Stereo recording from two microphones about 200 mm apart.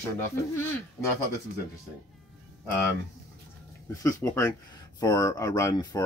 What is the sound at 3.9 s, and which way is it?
Speech, 15° left (ahead or behind).